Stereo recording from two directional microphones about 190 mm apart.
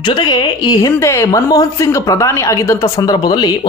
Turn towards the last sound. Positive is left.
turn(degrees=20)  # may be behind; listen again after turning